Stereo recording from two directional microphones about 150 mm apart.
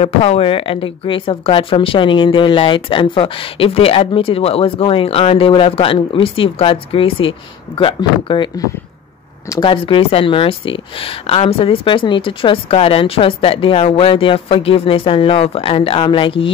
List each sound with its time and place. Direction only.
0.0 s speech: 40° left (ahead or behind)